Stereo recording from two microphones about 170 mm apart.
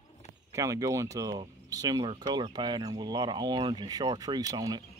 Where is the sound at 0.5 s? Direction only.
20° right (ahead or behind).